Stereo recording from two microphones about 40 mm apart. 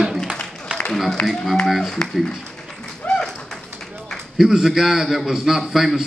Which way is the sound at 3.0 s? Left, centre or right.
Left.